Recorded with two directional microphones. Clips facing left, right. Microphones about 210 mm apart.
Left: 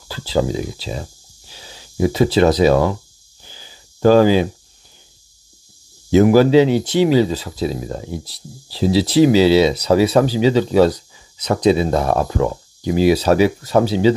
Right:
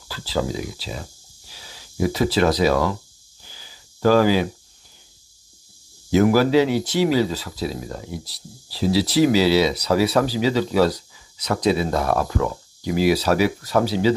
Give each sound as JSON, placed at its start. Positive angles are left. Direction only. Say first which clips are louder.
{"t": 0.1, "sound": "speech", "louder": "left 5 dB", "side_deg": 25}
{"t": 3.4, "sound": "a sound", "louder": "left 4 dB", "side_deg": 25}
{"t": 6.0, "sound": "speech", "louder": "left 5 dB", "side_deg": 20}